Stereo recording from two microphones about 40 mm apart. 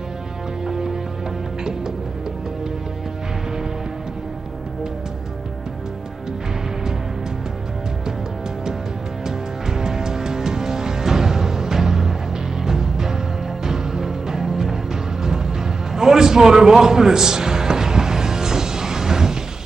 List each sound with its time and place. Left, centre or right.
0.7 s music: centre
9.7 s music: centre